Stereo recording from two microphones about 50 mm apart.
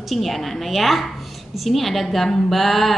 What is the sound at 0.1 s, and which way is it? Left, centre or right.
A woman's voice, centre.